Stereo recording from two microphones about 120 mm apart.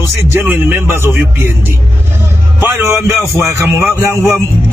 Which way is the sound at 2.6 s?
20° right (ahead or behind).